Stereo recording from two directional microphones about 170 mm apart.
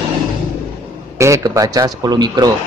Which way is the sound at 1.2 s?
20° right (ahead or behind).